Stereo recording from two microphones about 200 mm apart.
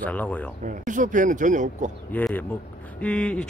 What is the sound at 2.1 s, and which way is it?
Speech, 10° left (ahead or behind).